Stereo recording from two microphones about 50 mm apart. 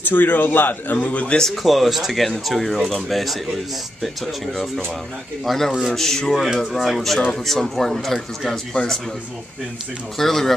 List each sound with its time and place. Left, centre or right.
0.0 s a man's voice: left
1.5 s speech: centre
10.1 s speech: centre